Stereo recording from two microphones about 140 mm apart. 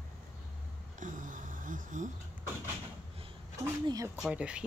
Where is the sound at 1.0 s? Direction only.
70° right (ahead or behind).